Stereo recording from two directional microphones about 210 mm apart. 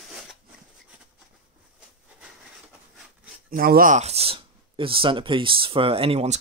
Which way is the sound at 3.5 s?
45° right (ahead or behind).